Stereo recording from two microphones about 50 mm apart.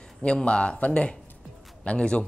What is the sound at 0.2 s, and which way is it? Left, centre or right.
A man's voice, left.